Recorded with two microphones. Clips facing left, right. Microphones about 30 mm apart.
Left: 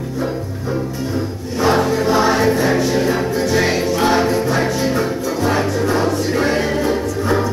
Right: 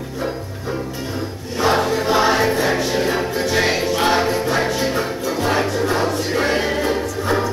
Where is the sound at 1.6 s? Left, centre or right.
Centre.